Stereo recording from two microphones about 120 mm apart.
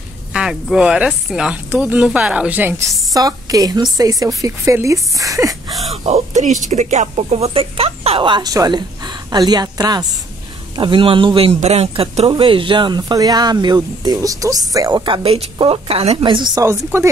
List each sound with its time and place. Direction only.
0.3 s speech: 5° right (ahead or behind)
3.2 s speech: 30° right (ahead or behind)
6.0 s speech: 70° right (ahead or behind); by 8.3 s 55° right (ahead or behind)
8.3 s a woman's voice: 35° right (ahead or behind)
10.8 s speech: 45° right (ahead or behind); by 14.9 s 30° right (ahead or behind)
14.9 s a woman's voice: 40° right (ahead or behind)
16.6 s speech: 25° right (ahead or behind)